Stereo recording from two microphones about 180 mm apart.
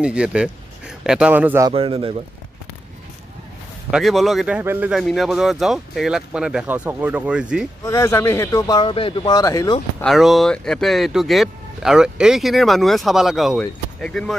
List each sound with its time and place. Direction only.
0.0 s speech: 5° right (ahead or behind)
1.7 s a man's voice: 30° right (ahead or behind)
3.9 s speech: centre (ahead or behind)
7.8 s a man's voice: 15° left (ahead or behind)
10.0 s speech: centre (ahead or behind)